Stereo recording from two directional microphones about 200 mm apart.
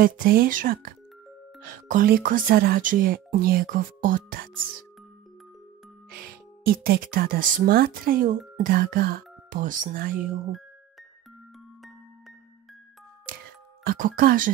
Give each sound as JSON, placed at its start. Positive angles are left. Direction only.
{"t": 0.0, "sound": "speech", "side_deg": -45}
{"t": 6.0, "sound": "speech", "side_deg": -50}
{"t": 13.8, "sound": "speech", "side_deg": -45}